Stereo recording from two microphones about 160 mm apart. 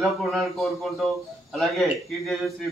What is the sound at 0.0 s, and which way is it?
A man's voice, centre (ahead or behind).